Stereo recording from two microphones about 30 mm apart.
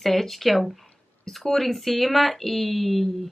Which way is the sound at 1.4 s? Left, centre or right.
Left.